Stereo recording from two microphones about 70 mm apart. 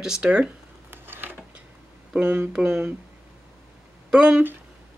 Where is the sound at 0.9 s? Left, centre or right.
Right.